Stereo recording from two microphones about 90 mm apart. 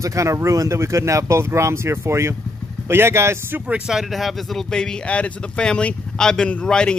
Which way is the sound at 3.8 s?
Centre (ahead or behind).